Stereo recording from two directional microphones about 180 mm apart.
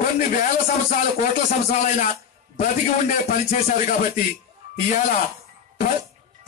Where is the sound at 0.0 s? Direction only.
45° left (ahead or behind).